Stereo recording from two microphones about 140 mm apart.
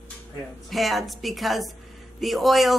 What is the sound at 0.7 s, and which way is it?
Speech, centre (ahead or behind).